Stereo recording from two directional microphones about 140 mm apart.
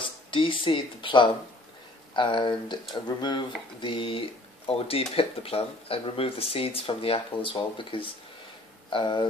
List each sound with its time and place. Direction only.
0.0 s speech: 35° left (ahead or behind)